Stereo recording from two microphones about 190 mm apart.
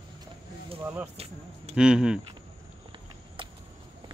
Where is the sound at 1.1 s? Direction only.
30° right (ahead or behind).